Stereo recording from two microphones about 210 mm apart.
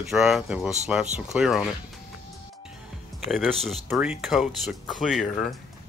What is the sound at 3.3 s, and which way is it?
Speech, centre (ahead or behind).